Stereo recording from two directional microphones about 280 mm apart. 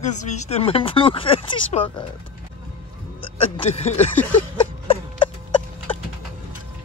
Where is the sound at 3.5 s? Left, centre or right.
Left.